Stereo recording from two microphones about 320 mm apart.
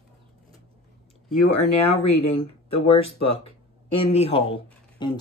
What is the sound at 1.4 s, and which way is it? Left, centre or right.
Speech, centre.